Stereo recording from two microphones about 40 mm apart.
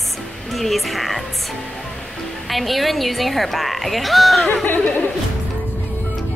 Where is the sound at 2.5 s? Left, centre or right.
Centre.